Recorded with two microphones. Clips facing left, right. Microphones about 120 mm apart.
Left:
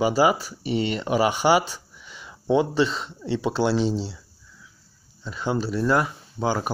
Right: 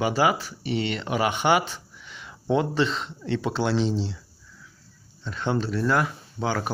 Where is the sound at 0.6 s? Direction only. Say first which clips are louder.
Left 2 dB; 40° left (ahead or behind).